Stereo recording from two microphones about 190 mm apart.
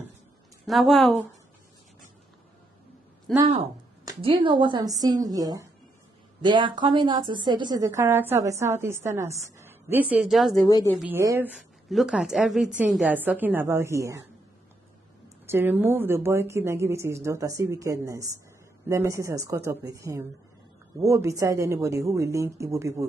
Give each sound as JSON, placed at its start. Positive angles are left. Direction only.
{"t": 0.7, "sound": "speech", "side_deg": 0}
{"t": 3.3, "sound": "speech", "side_deg": 0}
{"t": 4.0, "sound": "a woman's voice", "side_deg": -25}
{"t": 11.0, "sound": "a woman's voice", "side_deg": -10}
{"t": 11.9, "sound": "a woman's voice", "side_deg": 0}
{"t": 15.4, "sound": "a woman's voice", "side_deg": -10}